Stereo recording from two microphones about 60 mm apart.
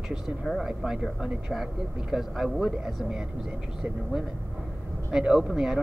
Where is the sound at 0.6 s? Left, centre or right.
Centre.